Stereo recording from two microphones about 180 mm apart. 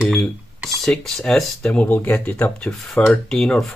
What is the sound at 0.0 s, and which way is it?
Speech, centre (ahead or behind).